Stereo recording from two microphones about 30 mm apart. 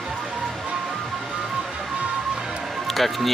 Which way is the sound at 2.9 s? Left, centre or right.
Centre.